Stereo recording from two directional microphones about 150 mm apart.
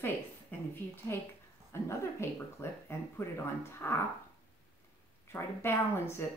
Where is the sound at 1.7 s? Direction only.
15° left (ahead or behind).